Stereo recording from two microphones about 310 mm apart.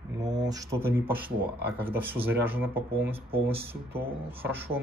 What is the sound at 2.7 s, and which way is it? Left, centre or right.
Speech, centre.